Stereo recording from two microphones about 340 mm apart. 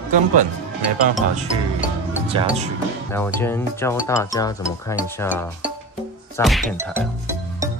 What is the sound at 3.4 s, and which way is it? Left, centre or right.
Speech, centre.